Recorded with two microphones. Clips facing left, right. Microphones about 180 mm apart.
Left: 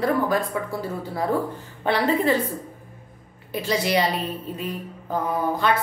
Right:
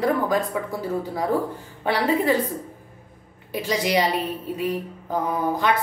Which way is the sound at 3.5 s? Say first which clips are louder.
Even; 15° right (ahead or behind).